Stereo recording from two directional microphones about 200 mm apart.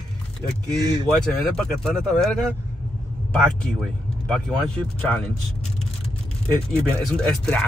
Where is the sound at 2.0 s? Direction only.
Centre (ahead or behind).